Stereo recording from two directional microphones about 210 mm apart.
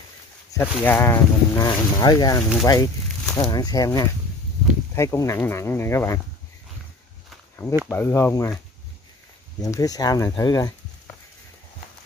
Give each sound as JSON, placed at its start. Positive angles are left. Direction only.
{"t": 0.5, "sound": "speech", "side_deg": 10}
{"t": 7.9, "sound": "speech", "side_deg": 10}
{"t": 9.6, "sound": "speech", "side_deg": 15}